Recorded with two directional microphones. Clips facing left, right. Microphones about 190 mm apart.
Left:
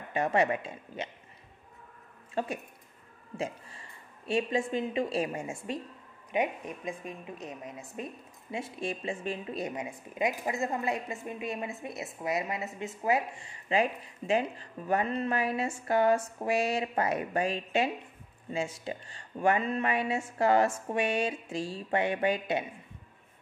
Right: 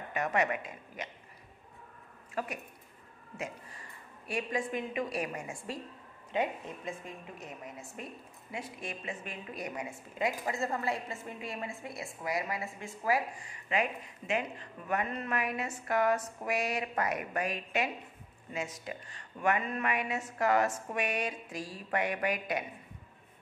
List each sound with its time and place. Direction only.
0.1 s a woman's voice: 30° left (ahead or behind)
2.3 s speech: 30° left (ahead or behind)
4.3 s a woman's voice: 25° left (ahead or behind)